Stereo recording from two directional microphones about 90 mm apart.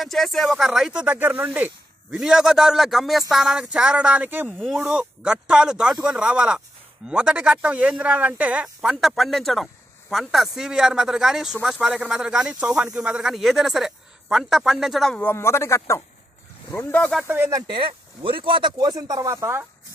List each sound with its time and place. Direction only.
0.0 s a man's voice: centre (ahead or behind); by 4.5 s 20° right (ahead or behind)
4.5 s speech: centre (ahead or behind)
8.8 s a man's voice: centre (ahead or behind)
15.1 s speech: 25° left (ahead or behind)
17.2 s speech: 20° right (ahead or behind)
17.7 s speech: 70° right (ahead or behind)
18.8 s speech: 45° right (ahead or behind); by 19.7 s 25° right (ahead or behind)